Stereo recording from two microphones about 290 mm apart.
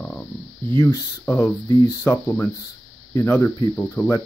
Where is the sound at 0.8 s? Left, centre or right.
Centre.